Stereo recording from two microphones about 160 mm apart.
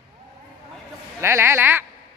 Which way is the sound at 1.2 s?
15° right (ahead or behind).